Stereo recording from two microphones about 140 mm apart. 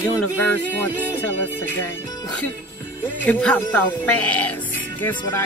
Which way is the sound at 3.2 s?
10° left (ahead or behind).